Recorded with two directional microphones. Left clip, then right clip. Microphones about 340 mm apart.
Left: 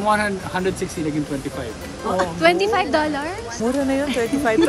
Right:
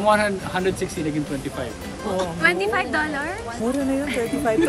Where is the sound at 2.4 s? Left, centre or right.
Centre.